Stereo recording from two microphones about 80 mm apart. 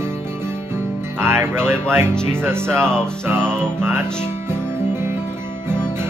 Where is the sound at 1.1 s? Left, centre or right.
Right.